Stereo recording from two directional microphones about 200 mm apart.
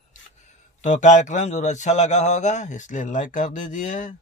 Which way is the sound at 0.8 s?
40° left (ahead or behind).